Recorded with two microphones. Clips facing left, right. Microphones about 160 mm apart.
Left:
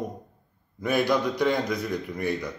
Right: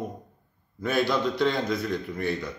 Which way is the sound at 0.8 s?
15° left (ahead or behind).